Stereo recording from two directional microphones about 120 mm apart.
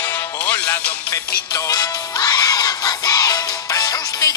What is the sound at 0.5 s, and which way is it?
Music, 15° left (ahead or behind).